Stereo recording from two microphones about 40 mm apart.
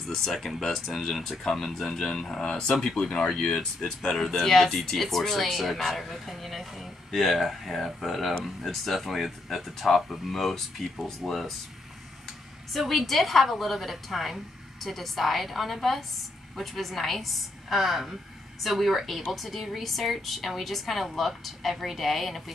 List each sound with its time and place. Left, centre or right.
0.0 s a woman's voice: centre
2.3 s a woman's voice: centre
12.7 s a woman's voice: centre